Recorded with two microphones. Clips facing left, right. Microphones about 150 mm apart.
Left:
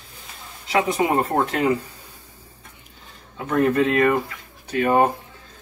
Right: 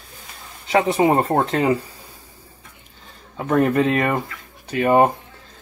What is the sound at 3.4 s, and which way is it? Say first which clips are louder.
Speech: right 2 dB; 35° right (ahead or behind).